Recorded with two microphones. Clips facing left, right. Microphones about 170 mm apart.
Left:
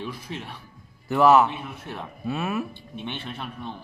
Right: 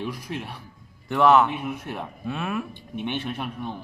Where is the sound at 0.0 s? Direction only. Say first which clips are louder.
Right 3 dB; 15° right (ahead or behind).